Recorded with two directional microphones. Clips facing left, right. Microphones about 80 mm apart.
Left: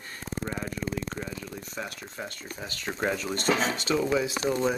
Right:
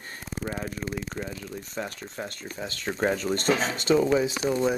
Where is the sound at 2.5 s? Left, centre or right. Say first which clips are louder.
Right 4 dB; right.